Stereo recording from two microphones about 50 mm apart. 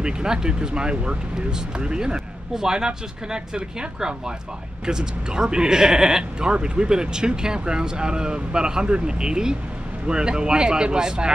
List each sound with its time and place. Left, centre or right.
0.0 s speech: centre